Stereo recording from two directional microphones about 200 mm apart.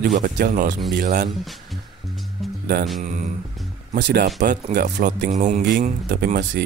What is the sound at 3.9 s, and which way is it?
Speech, 60° right (ahead or behind).